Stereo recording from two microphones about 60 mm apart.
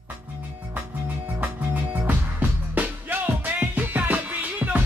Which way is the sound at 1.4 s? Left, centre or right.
Right.